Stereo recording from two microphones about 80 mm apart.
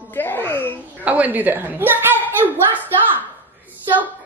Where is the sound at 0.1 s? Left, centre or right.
Left.